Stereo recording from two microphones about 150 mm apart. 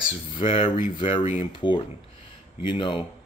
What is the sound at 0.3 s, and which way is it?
Speech, 35° left (ahead or behind).